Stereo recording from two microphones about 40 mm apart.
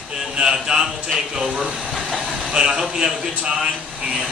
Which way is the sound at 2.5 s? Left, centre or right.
Centre.